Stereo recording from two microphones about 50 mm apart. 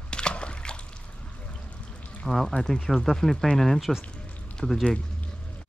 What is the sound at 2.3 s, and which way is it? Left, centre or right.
Speech, centre.